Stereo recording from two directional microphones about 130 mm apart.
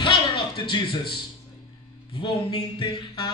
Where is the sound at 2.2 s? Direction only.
40° left (ahead or behind).